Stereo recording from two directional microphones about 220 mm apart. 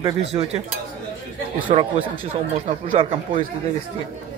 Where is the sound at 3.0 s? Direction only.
20° right (ahead or behind).